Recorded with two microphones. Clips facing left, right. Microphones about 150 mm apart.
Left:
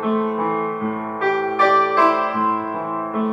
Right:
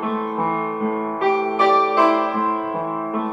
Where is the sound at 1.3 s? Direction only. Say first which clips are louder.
Even; 20° right (ahead or behind).